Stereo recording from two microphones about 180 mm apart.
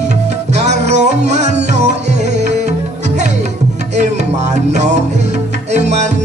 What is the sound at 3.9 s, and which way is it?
Music, 40° right (ahead or behind).